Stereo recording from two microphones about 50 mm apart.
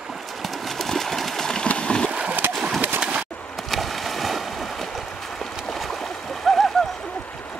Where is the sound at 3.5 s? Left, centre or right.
Centre.